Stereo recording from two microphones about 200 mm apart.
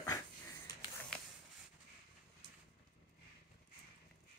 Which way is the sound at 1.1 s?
5° left (ahead or behind).